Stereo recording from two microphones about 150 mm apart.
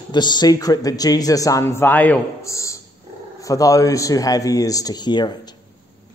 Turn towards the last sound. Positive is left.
turn(degrees=30)  # may be behind; listen again after turning